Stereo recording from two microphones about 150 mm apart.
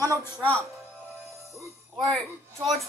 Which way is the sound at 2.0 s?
Centre (ahead or behind).